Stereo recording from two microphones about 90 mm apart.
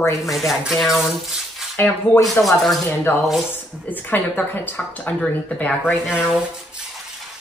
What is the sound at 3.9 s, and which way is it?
A woman's voice, 20° left (ahead or behind).